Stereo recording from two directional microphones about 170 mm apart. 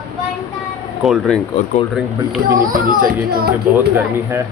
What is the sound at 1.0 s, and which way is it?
Speech, centre (ahead or behind).